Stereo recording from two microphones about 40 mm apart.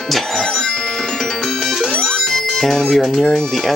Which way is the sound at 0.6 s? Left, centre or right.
Left.